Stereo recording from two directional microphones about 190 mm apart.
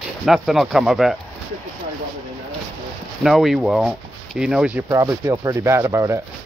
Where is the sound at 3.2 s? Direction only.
Centre (ahead or behind).